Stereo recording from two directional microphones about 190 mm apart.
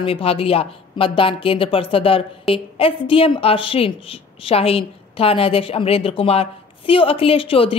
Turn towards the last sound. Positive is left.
turn(degrees=30)  # may be behind; listen again after turning